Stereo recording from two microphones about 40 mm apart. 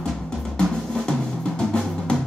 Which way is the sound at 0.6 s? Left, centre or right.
Centre.